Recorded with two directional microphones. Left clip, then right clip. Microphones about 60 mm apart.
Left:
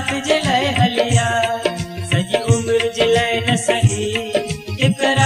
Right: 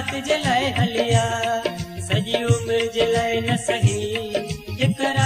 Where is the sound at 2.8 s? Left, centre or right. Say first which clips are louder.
Left 4 dB; left.